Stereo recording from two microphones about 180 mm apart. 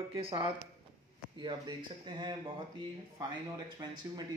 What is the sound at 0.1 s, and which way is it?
Speech, 30° right (ahead or behind).